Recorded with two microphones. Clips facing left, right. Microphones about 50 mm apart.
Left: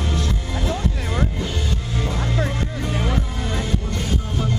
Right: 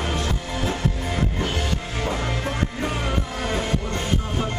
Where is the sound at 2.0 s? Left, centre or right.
Right.